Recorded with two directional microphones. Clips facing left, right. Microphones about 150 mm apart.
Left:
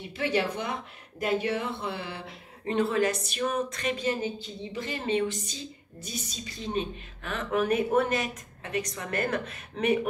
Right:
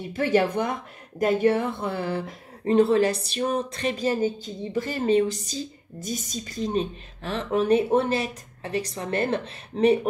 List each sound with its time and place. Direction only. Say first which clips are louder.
0.0 s speech: right 6 dB; 45° right (ahead or behind)